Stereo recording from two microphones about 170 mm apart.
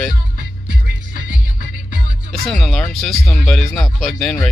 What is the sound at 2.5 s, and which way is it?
Speech, 5° left (ahead or behind).